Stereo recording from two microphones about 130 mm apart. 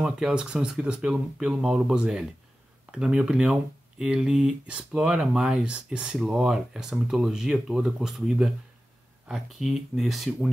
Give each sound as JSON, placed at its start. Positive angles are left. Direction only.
{"t": 0.0, "sound": "speech", "side_deg": -5}